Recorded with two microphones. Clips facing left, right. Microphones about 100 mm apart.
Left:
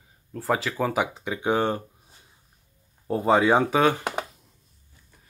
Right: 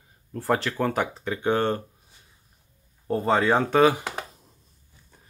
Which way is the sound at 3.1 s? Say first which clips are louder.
Left 2 dB; 10° left (ahead or behind).